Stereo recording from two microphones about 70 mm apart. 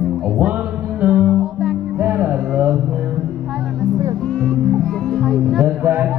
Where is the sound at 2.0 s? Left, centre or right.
Right.